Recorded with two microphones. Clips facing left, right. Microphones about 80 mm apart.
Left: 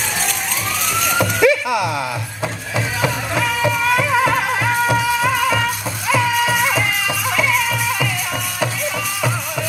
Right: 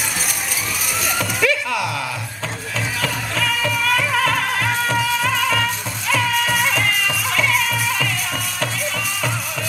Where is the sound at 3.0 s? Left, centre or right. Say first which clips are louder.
Left 4 dB; centre.